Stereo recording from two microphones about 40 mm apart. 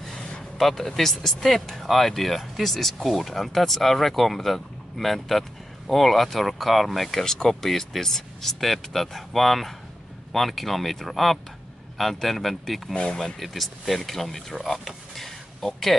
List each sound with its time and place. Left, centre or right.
0.6 s speech: centre
12.9 s speech: left
13.4 s speech: centre